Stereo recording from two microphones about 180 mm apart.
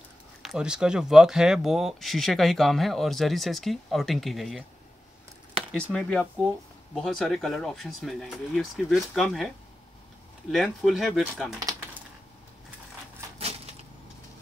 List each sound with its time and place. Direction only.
0.4 s speech: 5° right (ahead or behind)
10.5 s speech: centre (ahead or behind)
13.4 s a sound: 35° right (ahead or behind)